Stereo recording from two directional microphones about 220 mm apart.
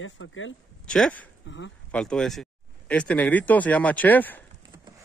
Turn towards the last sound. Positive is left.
turn(degrees=10)  # may be behind; listen again after turning